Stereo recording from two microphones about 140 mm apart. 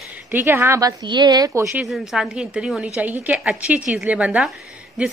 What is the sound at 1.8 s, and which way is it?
A woman's voice, 5° right (ahead or behind).